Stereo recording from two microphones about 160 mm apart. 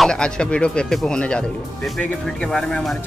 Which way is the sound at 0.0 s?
5° left (ahead or behind).